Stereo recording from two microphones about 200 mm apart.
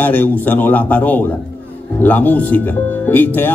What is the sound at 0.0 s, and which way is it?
A man's voice, 10° left (ahead or behind).